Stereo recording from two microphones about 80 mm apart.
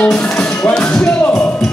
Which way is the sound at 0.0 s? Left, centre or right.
Centre.